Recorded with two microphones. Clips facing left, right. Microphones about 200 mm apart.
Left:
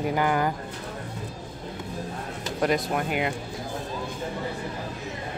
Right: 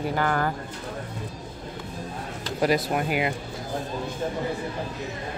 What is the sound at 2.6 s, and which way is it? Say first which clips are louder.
Speech: right 2 dB; 5° right (ahead or behind).